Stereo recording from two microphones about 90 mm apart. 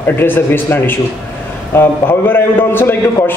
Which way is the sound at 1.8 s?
25° left (ahead or behind).